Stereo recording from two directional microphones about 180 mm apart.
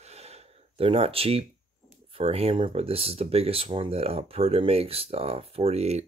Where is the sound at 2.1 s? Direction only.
30° right (ahead or behind).